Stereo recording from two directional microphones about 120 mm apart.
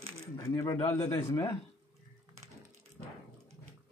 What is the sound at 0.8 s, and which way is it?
Speech, 55° left (ahead or behind).